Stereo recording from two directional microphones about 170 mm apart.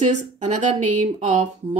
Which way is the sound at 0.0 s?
40° right (ahead or behind).